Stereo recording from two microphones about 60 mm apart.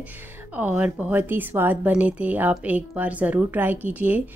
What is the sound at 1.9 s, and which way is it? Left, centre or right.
A woman's voice, right.